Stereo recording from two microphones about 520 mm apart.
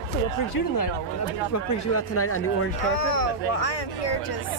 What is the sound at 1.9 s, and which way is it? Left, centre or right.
Speech, left.